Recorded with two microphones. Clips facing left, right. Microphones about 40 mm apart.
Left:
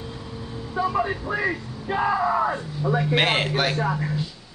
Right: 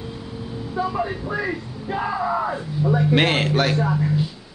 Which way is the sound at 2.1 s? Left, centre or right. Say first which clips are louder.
Even; centre.